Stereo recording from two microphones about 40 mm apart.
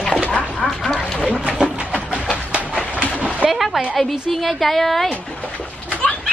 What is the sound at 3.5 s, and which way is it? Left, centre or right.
A woman's voice, centre.